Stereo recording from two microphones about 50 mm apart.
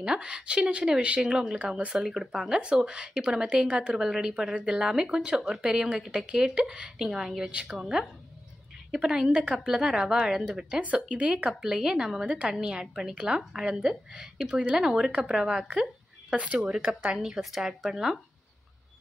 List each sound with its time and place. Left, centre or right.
0.0 s speech: centre
2.3 s speech: centre
2.6 s a woman's voice: centre
7.2 s speech: centre
9.1 s a woman's voice: centre
13.4 s speech: centre
16.3 s a woman's voice: right; by 18.2 s centre